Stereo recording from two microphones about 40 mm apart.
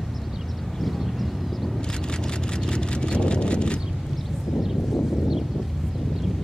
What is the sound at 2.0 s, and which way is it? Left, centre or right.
Vehicle, centre.